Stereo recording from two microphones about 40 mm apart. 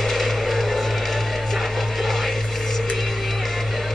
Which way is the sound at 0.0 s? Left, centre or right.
Centre.